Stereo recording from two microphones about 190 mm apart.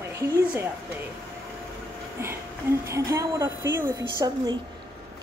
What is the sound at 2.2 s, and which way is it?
A woman's voice, 15° right (ahead or behind).